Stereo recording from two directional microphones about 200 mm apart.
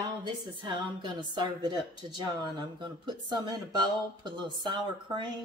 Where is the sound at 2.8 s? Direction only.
20° right (ahead or behind).